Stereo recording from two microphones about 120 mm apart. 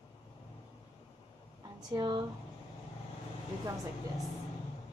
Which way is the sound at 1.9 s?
40° right (ahead or behind).